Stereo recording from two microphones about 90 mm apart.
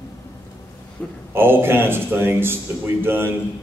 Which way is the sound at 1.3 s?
25° right (ahead or behind).